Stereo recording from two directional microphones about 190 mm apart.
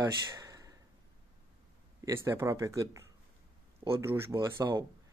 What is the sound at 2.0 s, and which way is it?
A man's voice, 15° right (ahead or behind).